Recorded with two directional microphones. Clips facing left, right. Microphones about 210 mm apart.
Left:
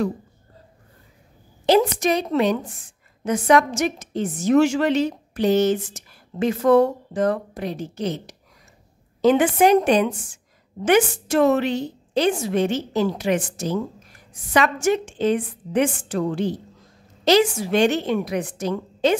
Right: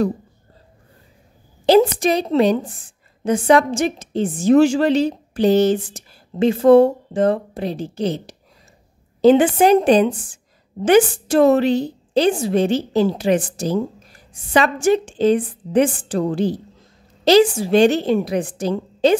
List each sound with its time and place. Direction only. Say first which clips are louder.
1.7 s a woman's voice: right 4 dB; 30° right (ahead or behind)